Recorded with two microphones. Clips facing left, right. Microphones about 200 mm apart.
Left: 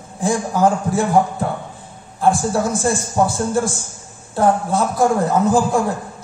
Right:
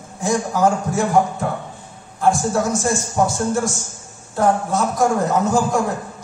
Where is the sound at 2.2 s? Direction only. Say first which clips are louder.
Left 1 dB; 30° left (ahead or behind).